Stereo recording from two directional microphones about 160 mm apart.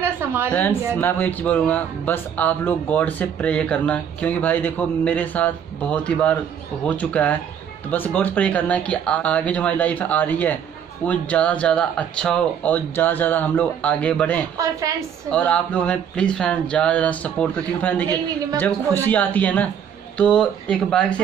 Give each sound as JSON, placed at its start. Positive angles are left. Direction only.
{"t": 0.0, "sound": "a sound", "side_deg": -15}
{"t": 0.5, "sound": "speech", "side_deg": 10}
{"t": 14.6, "sound": "a woman's voice", "side_deg": -20}
{"t": 15.3, "sound": "speech", "side_deg": 10}
{"t": 19.0, "sound": "speech", "side_deg": 10}